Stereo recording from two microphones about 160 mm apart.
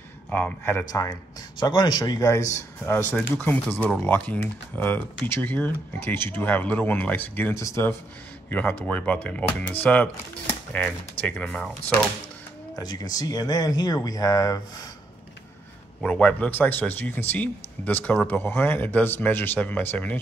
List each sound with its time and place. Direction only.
0.3 s a man's voice: 10° left (ahead or behind)
1.6 s a man's voice: 25° left (ahead or behind); by 12.0 s 5° left (ahead or behind)
12.7 s speech: 25° left (ahead or behind)
16.0 s a man's voice: 10° left (ahead or behind)